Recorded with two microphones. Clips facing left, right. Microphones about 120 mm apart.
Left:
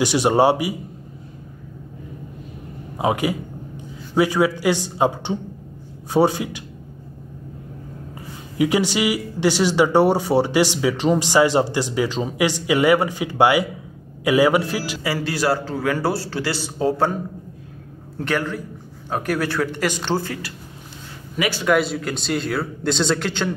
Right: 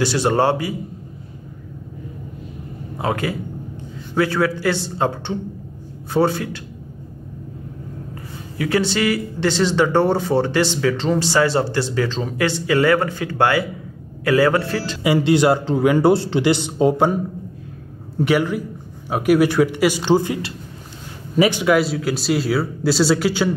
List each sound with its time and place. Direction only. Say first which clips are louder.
0.0 s speech: left 1 dB; 15° left (ahead or behind)
3.0 s speech: left 2 dB; 15° left (ahead or behind)
8.5 s speech: left 1 dB; 15° left (ahead or behind)
15.0 s a man's voice: right 7 dB; 20° right (ahead or behind)
21.6 s speech: right 2 dB; centre (ahead or behind)